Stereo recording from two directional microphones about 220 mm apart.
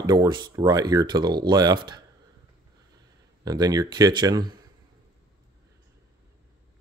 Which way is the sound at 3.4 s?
15° right (ahead or behind).